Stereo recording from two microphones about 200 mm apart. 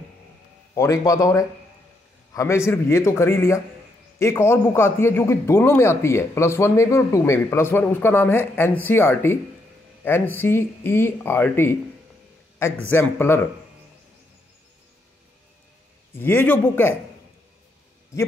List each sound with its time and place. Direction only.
0.7 s a man's voice: 15° left (ahead or behind)
16.1 s a man's voice: 10° left (ahead or behind)